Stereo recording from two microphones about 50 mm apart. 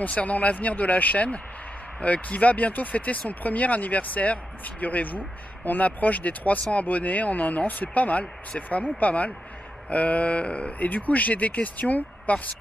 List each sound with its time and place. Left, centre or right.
0.1 s speech: left